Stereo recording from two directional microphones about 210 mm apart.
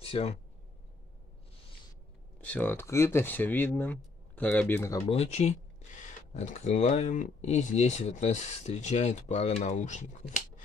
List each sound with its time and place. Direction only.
0.0 s speech: 30° left (ahead or behind)
2.4 s speech: 10° left (ahead or behind)
5.1 s speech: 30° left (ahead or behind)